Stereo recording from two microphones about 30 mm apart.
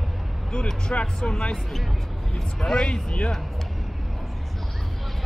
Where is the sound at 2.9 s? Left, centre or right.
Left.